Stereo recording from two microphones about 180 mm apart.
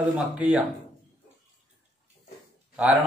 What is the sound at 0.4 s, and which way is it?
Speech, 5° right (ahead or behind).